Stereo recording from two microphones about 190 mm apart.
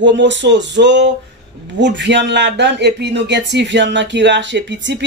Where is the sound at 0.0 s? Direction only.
70° right (ahead or behind).